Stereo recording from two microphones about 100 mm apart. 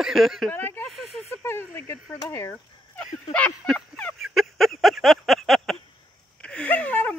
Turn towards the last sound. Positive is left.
turn(degrees=15)  # may be behind; listen again after turning